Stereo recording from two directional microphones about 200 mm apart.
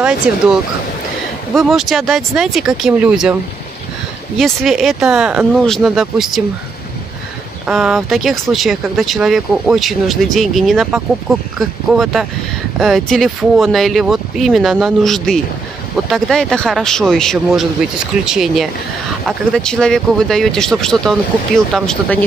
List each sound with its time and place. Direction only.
0.3 s speech: 5° right (ahead or behind)
1.5 s speech: centre (ahead or behind)
4.4 s speech: centre (ahead or behind)
7.6 s speech: centre (ahead or behind)